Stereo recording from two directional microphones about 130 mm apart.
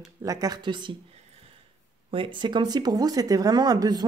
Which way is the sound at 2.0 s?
40° right (ahead or behind).